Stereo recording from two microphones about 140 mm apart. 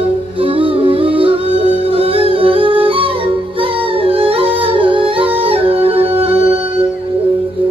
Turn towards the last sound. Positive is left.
turn(degrees=-45)  # may be behind; listen again after turning